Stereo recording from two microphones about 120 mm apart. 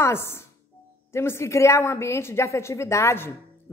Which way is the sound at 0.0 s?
20° left (ahead or behind).